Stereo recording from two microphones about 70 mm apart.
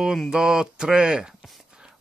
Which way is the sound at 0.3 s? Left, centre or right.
Centre.